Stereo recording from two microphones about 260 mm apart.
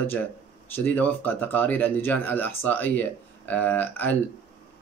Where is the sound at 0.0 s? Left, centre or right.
Centre.